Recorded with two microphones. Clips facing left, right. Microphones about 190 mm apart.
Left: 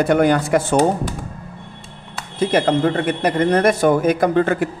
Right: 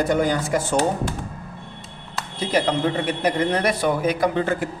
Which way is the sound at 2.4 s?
50° left (ahead or behind).